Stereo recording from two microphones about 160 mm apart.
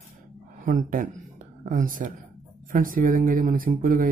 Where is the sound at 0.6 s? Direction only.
55° right (ahead or behind).